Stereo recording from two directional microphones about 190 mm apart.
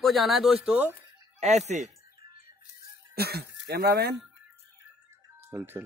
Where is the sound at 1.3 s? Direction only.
35° right (ahead or behind).